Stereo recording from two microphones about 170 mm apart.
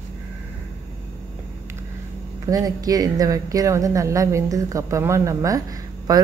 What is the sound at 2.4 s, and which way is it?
Speech, 20° right (ahead or behind).